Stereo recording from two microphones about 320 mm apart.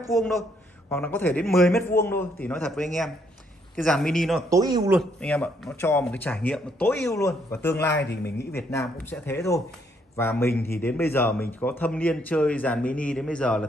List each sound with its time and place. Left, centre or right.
0.8 s speech: centre
4.9 s speech: centre
7.7 s a man's voice: left
8.5 s speech: centre